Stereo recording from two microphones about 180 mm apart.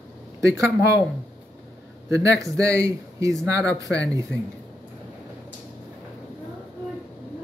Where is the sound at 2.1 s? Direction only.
80° left.